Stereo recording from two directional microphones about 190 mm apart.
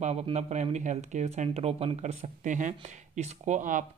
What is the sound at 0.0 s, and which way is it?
Speech, 35° right (ahead or behind).